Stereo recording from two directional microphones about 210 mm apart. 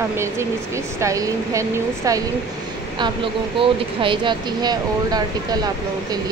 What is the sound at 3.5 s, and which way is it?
Speech, 25° right (ahead or behind).